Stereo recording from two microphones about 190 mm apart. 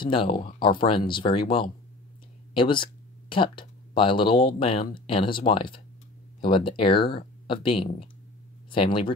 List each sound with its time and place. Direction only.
0.0 s speech: 25° left (ahead or behind)